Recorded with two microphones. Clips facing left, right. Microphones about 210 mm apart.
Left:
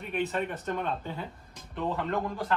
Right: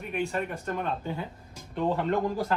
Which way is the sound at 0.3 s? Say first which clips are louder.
Even; centre (ahead or behind).